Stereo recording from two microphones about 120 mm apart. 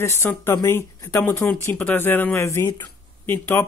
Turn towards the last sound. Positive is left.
turn(degrees=15)  # may be behind; listen again after turning